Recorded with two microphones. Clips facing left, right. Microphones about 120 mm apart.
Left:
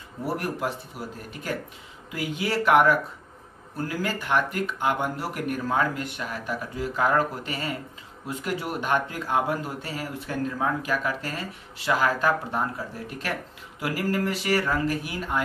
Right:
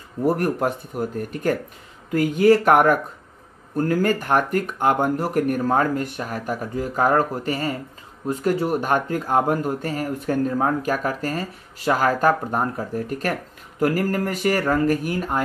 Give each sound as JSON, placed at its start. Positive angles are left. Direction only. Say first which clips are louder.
{"t": 0.2, "sound": "speech", "louder": "right 8 dB", "side_deg": -45}